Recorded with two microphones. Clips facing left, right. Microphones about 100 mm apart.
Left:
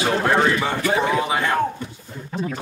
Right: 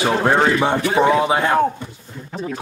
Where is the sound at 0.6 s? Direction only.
20° right (ahead or behind).